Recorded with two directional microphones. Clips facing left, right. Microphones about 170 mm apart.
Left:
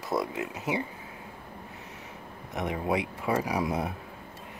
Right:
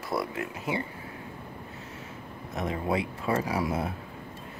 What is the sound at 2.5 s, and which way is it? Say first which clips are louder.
Speech: even; 15° left (ahead or behind).